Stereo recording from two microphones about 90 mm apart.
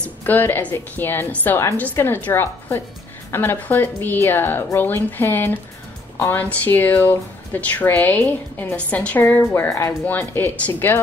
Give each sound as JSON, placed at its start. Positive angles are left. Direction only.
{"t": 0.3, "sound": "speech", "side_deg": 20}
{"t": 9.3, "sound": "speech", "side_deg": 25}